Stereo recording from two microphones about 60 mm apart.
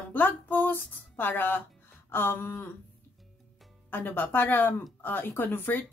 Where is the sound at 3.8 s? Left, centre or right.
Left.